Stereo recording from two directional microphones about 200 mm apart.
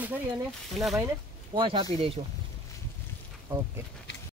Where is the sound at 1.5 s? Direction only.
25° right (ahead or behind).